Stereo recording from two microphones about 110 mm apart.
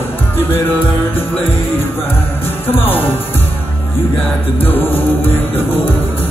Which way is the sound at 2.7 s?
20° left (ahead or behind).